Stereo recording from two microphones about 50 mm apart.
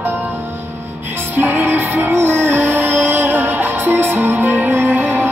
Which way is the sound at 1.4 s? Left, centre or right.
Right.